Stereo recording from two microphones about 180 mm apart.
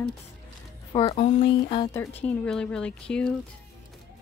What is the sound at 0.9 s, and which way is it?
Speech, 35° left (ahead or behind).